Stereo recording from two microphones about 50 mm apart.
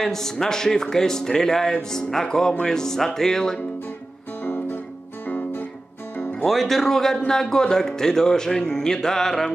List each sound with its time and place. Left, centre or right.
0.0 s a man's voice: centre
4.4 s music: left
6.4 s a man's voice: centre